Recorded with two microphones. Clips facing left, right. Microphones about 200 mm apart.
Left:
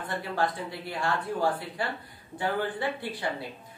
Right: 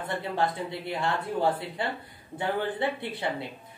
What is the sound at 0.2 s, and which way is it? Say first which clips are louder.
A woman's voice: even; 20° right (ahead or behind).